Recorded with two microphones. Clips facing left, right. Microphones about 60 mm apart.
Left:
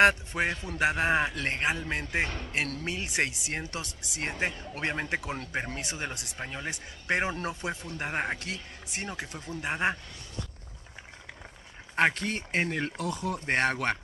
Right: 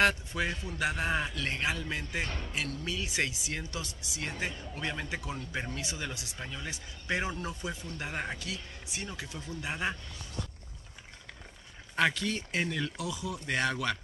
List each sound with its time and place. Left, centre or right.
0.0 s speech: left
7.7 s speech: left
11.9 s speech: left